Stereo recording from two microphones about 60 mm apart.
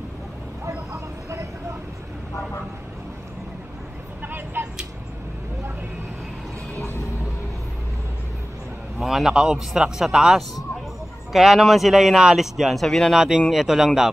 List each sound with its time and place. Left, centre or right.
4.2 s vehicle: right
6.7 s vehicle: left
8.9 s a man's voice: centre
12.8 s speech: centre
13.5 s speech: centre